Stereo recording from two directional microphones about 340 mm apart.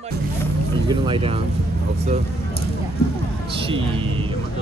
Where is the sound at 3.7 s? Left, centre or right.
Centre.